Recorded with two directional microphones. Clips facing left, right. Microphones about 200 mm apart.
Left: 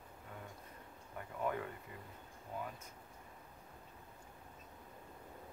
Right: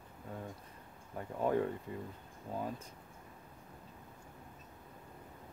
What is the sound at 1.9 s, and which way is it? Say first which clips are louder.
Speech: right 10 dB; 30° right (ahead or behind).